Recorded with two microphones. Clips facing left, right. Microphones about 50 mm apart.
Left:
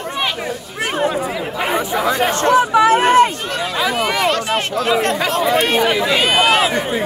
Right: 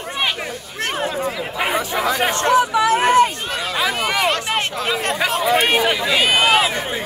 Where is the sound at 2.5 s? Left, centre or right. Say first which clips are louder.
Left 4 dB; left.